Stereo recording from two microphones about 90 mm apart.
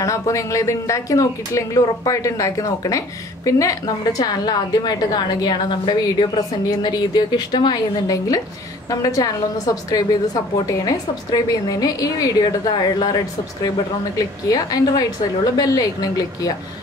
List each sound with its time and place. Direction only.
0.0 s a woman's voice: 35° left (ahead or behind)